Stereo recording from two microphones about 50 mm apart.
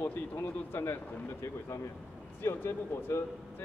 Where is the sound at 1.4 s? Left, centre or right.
Left.